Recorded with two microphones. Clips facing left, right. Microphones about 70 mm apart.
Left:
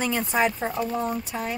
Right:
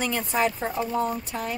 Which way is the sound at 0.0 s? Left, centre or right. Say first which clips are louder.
Left 1 dB; centre.